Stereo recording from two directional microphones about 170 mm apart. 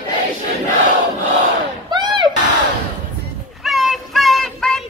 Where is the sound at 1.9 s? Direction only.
25° right (ahead or behind).